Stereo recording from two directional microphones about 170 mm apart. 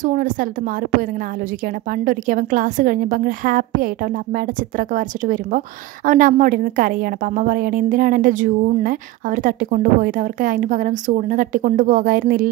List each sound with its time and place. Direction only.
0.0 s a woman's voice: 50° right (ahead or behind)
1.9 s a woman's voice: 50° right (ahead or behind)